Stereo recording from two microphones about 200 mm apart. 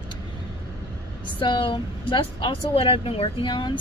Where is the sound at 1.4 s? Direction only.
25° left (ahead or behind).